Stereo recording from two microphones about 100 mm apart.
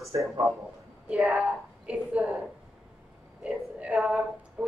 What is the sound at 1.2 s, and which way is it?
A woman's voice, 5° right (ahead or behind).